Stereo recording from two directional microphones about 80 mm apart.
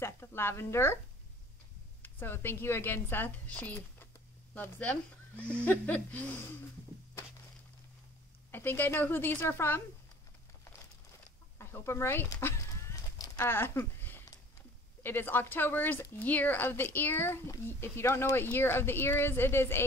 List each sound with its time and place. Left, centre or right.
0.0 s a woman's voice: left
2.0 s speech: left
8.5 s speech: left
11.5 s speech: left